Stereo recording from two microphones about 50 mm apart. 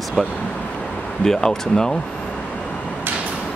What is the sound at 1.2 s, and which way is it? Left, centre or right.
Speech, centre.